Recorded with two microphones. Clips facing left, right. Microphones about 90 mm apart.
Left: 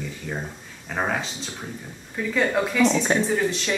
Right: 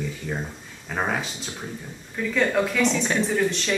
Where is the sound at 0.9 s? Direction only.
Centre (ahead or behind).